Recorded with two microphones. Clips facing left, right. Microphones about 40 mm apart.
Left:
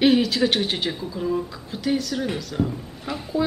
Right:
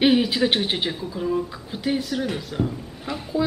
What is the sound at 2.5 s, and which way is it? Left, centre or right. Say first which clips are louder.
Speech: left 1 dB; centre.